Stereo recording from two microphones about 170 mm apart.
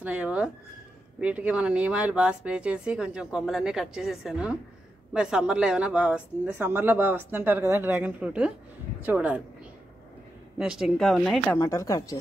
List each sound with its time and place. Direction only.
0.0 s speech: 10° right (ahead or behind)
10.6 s speech: 5° right (ahead or behind)
11.5 s a woman's voice: 20° left (ahead or behind)